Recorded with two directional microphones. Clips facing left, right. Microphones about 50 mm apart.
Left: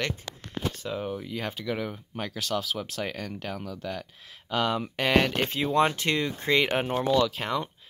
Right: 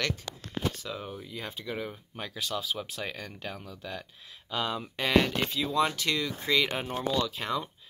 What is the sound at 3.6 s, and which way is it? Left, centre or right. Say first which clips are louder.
Speech: left 5 dB; left.